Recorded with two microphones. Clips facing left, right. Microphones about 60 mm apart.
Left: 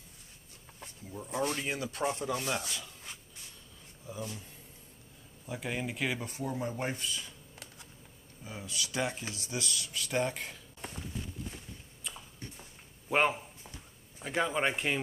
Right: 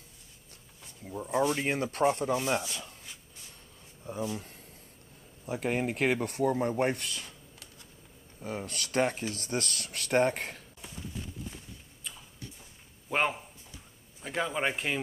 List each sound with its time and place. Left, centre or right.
1.1 s speech: right
1.6 s speech: right
2.3 s speech: centre
4.3 s speech: right
8.4 s speech: right
13.1 s a man's voice: centre